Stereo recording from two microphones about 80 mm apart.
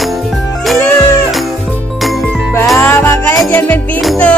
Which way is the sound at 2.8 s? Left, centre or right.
Left.